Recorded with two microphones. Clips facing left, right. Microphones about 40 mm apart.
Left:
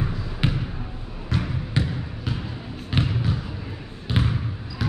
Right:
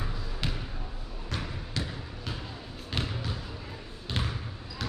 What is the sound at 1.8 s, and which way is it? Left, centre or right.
Basketball bounce, left.